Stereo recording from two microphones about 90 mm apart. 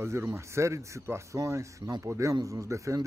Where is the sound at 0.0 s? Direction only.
30° right (ahead or behind).